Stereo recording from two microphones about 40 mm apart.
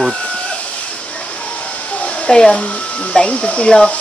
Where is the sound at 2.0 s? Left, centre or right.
Left.